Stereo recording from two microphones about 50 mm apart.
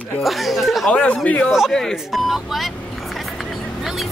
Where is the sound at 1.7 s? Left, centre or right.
Centre.